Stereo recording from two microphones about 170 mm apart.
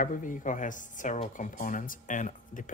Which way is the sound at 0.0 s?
50° left (ahead or behind).